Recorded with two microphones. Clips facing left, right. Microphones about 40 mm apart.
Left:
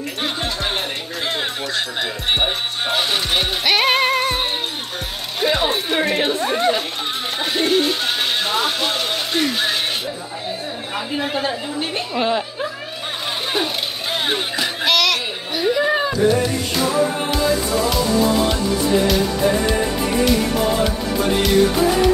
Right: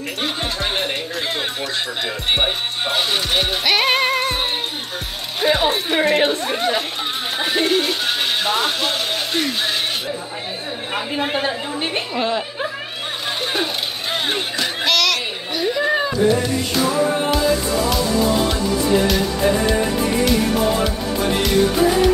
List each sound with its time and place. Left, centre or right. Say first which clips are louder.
2.3 s music: even; centre
5.4 s speech: right 1 dB; centre
11.1 s a woman's voice: even; right
12.2 s speech: left 2 dB; centre
14.1 s music: left 1 dB; centre